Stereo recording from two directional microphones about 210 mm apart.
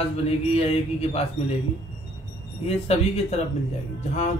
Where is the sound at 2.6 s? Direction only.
30° left (ahead or behind).